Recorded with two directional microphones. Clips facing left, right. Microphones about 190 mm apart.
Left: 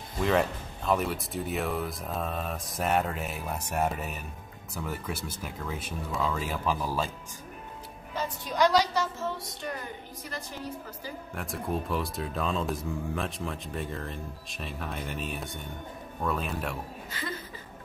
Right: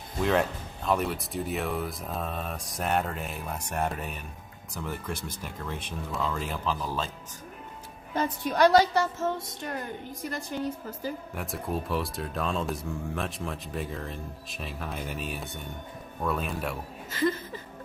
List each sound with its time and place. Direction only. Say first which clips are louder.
0.2 s speech: even; centre (ahead or behind)
8.1 s a woman's voice: right 5 dB; 55° right (ahead or behind)
11.3 s speech: even; centre (ahead or behind)